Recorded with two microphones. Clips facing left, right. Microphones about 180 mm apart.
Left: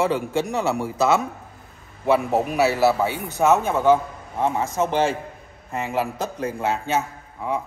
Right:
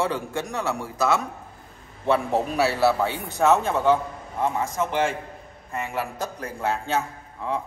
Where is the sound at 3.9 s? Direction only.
25° left (ahead or behind).